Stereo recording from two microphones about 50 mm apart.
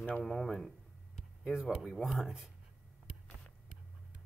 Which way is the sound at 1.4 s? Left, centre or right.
Centre.